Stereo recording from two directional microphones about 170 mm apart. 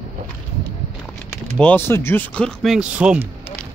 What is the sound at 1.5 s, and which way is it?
Speech, 10° left (ahead or behind).